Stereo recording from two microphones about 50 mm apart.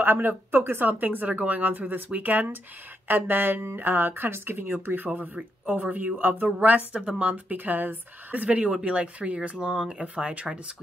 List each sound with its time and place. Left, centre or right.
0.0 s speech: right
6.9 s a woman's voice: right